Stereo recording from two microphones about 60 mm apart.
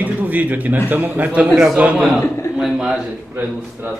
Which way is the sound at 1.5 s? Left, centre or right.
Centre.